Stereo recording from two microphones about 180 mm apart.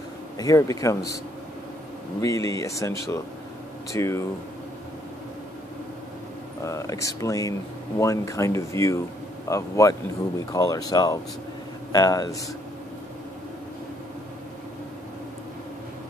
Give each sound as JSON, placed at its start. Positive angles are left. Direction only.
{"t": 0.4, "sound": "a man's voice", "side_deg": 20}
{"t": 2.2, "sound": "speech", "side_deg": 20}
{"t": 6.6, "sound": "a man's voice", "side_deg": 15}